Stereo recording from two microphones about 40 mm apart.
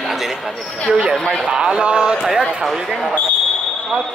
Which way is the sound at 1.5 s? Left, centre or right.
Centre.